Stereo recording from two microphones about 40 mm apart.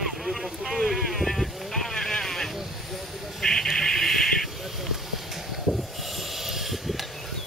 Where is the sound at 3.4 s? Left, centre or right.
Centre.